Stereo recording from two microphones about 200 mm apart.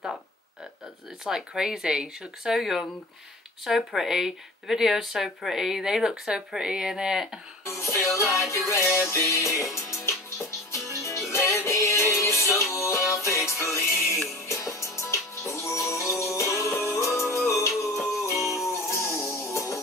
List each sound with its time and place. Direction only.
1.2 s speech: 5° right (ahead or behind)
7.6 s music: 15° left (ahead or behind)